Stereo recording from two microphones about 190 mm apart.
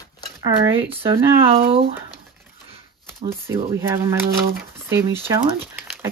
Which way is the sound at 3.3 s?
15° right (ahead or behind).